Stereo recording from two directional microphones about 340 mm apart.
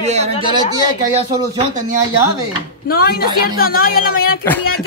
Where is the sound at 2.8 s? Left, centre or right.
Left.